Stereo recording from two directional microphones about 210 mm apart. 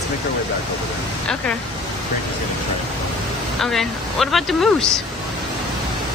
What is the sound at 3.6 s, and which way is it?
Speech, centre (ahead or behind).